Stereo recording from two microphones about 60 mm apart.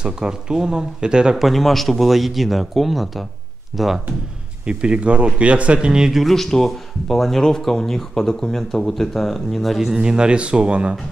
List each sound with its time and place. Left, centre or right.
0.0 s speech: centre
1.3 s speech: centre
4.6 s speech: centre
6.2 s speech: centre